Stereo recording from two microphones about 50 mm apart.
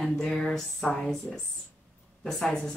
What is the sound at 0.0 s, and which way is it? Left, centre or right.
Speech, centre.